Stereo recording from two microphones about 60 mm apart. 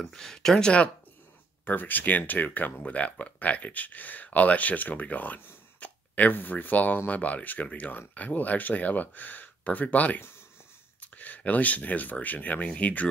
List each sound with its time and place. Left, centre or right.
0.0 s speech: centre
1.6 s speech: left